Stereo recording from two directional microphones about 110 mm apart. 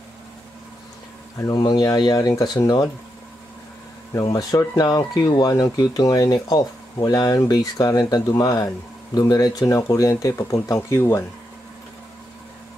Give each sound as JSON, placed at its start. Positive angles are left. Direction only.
{"t": 1.4, "sound": "speech", "side_deg": 35}
{"t": 4.1, "sound": "speech", "side_deg": 35}